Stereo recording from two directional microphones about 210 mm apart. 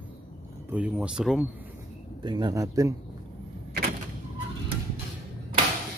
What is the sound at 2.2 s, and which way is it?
Speech, 20° right (ahead or behind).